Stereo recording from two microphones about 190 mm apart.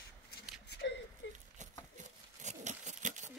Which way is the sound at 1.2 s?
70° left (ahead or behind).